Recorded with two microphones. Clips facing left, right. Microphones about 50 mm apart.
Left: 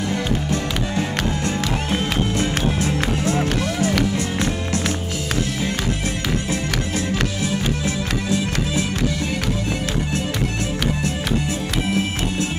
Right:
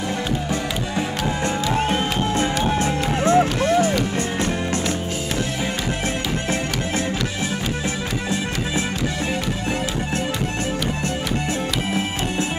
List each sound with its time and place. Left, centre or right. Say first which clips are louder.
0.5 s music: left 1 dB; centre
1.9 s music: right 1 dB; right